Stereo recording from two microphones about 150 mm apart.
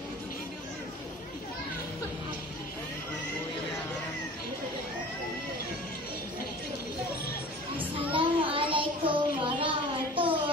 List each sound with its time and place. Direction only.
8.1 s child singing: 35° right (ahead or behind)